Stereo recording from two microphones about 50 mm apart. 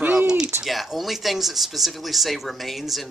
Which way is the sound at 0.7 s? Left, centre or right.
Centre.